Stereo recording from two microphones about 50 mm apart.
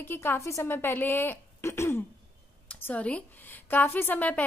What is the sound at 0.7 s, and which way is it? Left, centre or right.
Speech, left.